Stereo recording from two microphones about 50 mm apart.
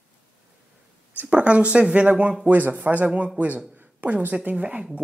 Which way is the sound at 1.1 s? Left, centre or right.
Right.